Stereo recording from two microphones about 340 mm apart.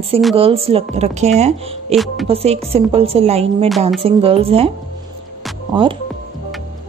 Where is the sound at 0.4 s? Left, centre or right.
Centre.